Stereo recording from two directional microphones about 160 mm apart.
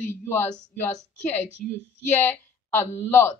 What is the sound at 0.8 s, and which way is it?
A woman's voice, 10° left (ahead or behind).